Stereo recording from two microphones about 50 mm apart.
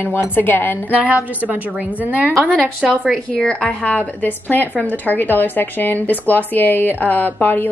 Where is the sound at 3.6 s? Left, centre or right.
Left.